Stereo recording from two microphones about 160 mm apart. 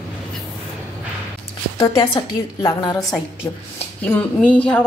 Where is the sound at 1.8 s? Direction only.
30° left (ahead or behind).